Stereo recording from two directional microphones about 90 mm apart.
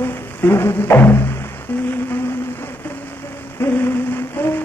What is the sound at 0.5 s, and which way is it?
Music, 25° left (ahead or behind).